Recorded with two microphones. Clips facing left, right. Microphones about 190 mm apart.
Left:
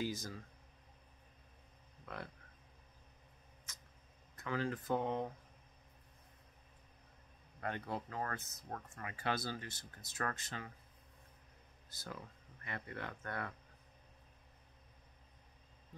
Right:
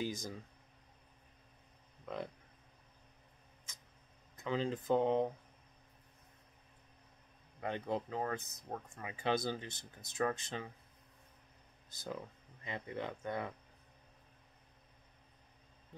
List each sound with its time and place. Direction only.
0.0 s speech: 20° right (ahead or behind)
2.1 s speech: 20° right (ahead or behind)
4.4 s speech: 20° right (ahead or behind)
7.6 s speech: 20° right (ahead or behind)
11.9 s speech: 20° right (ahead or behind)